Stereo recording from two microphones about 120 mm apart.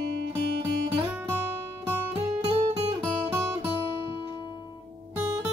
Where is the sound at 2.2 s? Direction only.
55° right (ahead or behind).